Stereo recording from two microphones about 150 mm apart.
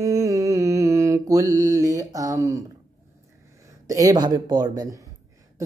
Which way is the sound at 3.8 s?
25° right (ahead or behind).